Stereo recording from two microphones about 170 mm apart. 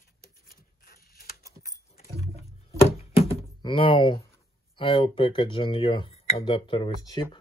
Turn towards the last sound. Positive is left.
turn(degrees=30)  # may be behind; listen again after turning